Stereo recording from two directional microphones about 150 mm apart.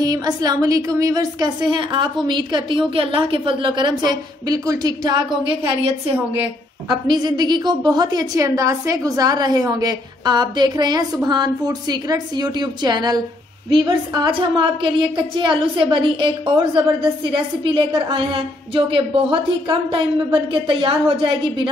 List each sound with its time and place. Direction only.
0.0 s a woman's voice: 25° right (ahead or behind)